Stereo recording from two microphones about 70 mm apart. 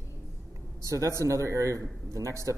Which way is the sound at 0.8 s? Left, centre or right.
Right.